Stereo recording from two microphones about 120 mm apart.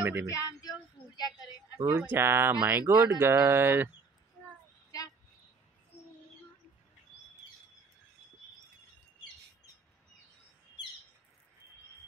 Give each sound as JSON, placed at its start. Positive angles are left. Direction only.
{"t": 0.0, "sound": "speech", "side_deg": -15}
{"t": 0.3, "sound": "a sound", "side_deg": 30}
{"t": 1.8, "sound": "speech", "side_deg": -30}
{"t": 2.9, "sound": "speech", "side_deg": -30}